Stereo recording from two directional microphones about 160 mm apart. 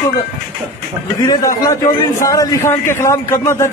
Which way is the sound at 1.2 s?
25° left (ahead or behind).